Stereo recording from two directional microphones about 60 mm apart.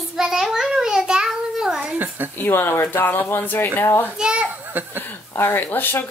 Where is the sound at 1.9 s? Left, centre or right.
Right.